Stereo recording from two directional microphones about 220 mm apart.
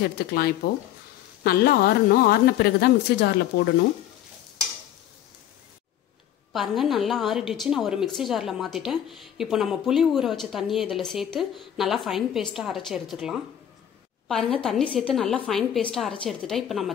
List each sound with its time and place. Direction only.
0.0 s a woman's voice: 45° left (ahead or behind)
6.5 s a woman's voice: centre (ahead or behind)